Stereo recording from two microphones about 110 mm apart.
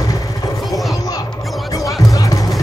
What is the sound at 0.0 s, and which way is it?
Vehicle, 30° left (ahead or behind).